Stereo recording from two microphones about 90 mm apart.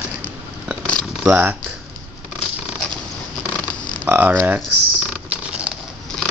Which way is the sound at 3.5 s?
15° left (ahead or behind).